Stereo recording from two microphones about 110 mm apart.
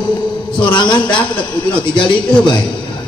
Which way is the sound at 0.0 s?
45° left (ahead or behind).